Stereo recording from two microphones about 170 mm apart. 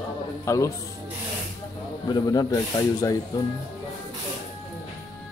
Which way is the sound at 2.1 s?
25° left (ahead or behind).